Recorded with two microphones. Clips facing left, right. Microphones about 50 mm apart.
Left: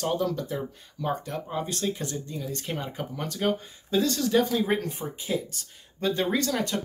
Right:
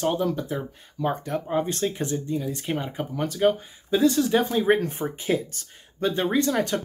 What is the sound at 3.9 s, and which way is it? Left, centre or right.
Speech, centre.